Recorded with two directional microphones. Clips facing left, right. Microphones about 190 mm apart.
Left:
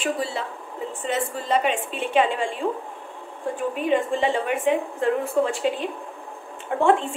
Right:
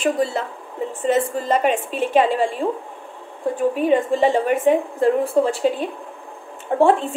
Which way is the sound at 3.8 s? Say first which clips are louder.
Right 4 dB; 40° right (ahead or behind).